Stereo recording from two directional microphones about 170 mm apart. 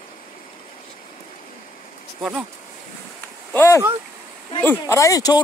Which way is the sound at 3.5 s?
15° left (ahead or behind).